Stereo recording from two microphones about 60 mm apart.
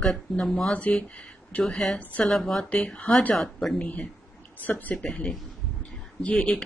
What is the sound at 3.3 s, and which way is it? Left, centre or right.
Speech, centre.